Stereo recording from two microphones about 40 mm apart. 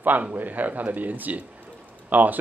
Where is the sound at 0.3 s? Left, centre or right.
Right.